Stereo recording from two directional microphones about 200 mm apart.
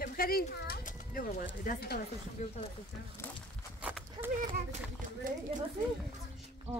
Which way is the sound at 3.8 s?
10° right (ahead or behind).